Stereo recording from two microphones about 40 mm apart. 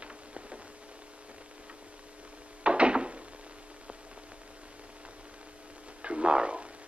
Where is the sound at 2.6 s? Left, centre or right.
Right.